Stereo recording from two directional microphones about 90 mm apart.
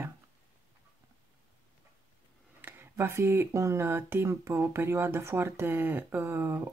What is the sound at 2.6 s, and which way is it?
Speech, 25° right (ahead or behind).